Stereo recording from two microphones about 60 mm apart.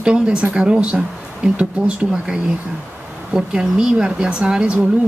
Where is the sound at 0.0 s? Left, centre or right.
Centre.